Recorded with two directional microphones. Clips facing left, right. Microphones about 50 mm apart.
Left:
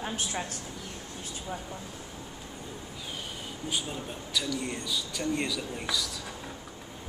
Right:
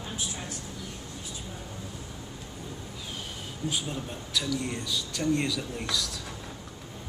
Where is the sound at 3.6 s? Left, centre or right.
Centre.